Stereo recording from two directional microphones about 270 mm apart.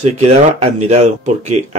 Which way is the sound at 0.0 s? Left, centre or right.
Right.